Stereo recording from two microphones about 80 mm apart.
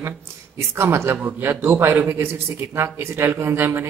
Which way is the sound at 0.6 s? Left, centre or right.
Right.